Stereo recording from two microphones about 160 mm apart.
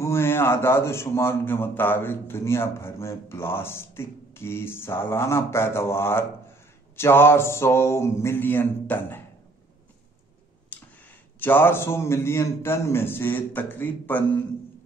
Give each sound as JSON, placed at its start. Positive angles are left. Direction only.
{"t": 0.0, "sound": "a man's voice", "side_deg": 15}
{"t": 10.7, "sound": "speech", "side_deg": 10}